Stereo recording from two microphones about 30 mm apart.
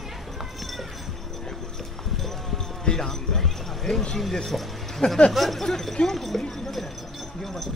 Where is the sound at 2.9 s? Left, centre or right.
Centre.